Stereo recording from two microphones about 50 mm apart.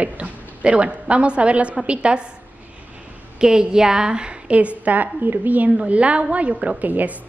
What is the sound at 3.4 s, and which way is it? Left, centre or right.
A woman's voice, centre.